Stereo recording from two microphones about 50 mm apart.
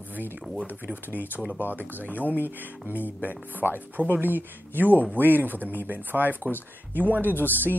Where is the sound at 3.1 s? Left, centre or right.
Right.